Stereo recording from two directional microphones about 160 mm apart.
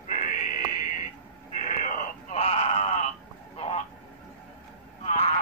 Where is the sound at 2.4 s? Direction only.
40° left (ahead or behind).